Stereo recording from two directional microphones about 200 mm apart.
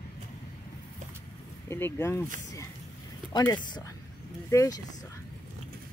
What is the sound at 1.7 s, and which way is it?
Speech, 10° left (ahead or behind).